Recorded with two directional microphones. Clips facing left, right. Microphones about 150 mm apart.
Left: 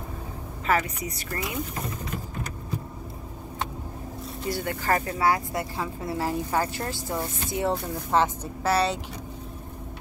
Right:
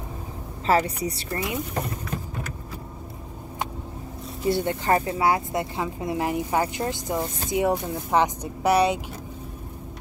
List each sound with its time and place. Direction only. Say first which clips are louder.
0.7 s a woman's voice: right 4 dB; 30° right (ahead or behind)
4.5 s speech: right 5 dB; 25° right (ahead or behind)